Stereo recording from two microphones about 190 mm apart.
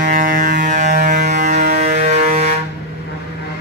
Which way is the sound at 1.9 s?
40° right (ahead or behind).